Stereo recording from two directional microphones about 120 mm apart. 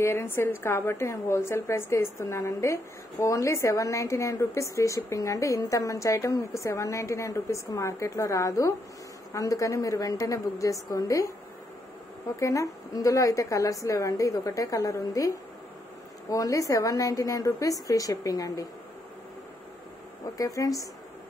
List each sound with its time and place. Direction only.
0.0 s a woman's voice: 20° left (ahead or behind)
12.4 s a woman's voice: 25° left (ahead or behind)
20.3 s a woman's voice: 30° left (ahead or behind)